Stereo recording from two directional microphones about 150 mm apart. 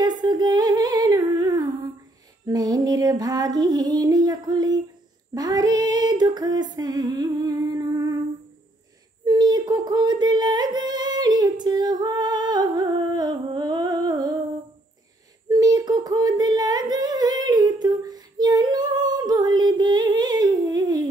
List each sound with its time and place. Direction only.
0.0 s humming: 30° right (ahead or behind)
2.4 s female singing: 25° right (ahead or behind)
9.2 s a sound: 25° right (ahead or behind)
15.5 s humming: 25° right (ahead or behind)